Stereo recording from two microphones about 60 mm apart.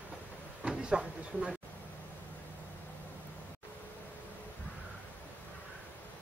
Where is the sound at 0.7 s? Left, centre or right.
Centre.